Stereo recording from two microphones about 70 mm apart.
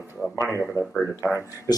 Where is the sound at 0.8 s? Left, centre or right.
Left.